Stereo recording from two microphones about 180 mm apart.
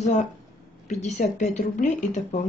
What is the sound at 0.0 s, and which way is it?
A woman's voice, 40° left (ahead or behind).